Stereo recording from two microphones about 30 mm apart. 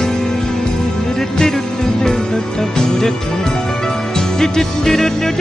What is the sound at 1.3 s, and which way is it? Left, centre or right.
Music, centre.